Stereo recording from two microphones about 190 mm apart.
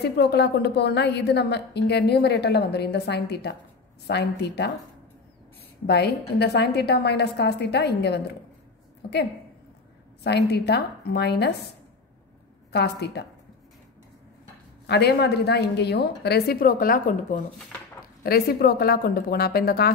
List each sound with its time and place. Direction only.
0.0 s a woman's voice: 60° left (ahead or behind)
5.9 s a woman's voice: 60° left (ahead or behind)
9.0 s a sound: 60° left (ahead or behind)
10.2 s a woman's voice: 60° left (ahead or behind)
12.7 s a woman's voice: 60° left (ahead or behind)
14.9 s a woman's voice: 60° left (ahead or behind)